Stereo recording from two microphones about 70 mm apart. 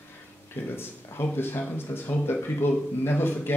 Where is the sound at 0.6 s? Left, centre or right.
Left.